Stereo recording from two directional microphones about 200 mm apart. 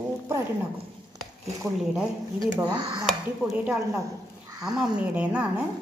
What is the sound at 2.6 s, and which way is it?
Speech, 20° right (ahead or behind).